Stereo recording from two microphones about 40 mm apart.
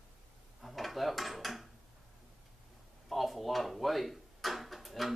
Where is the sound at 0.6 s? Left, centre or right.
Centre.